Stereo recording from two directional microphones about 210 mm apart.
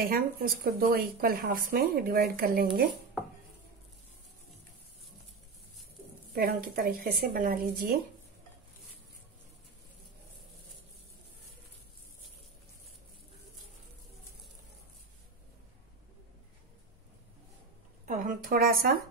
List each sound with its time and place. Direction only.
0.0 s speech: 45° right (ahead or behind)
6.3 s speech: 45° right (ahead or behind)
18.0 s speech: 40° right (ahead or behind)